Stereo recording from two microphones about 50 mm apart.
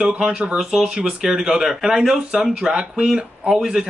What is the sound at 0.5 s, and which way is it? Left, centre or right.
A man's voice, centre.